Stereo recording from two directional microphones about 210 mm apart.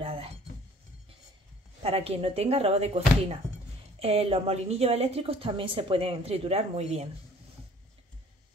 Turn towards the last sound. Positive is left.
turn(degrees=-30)  # may be behind; listen again after turning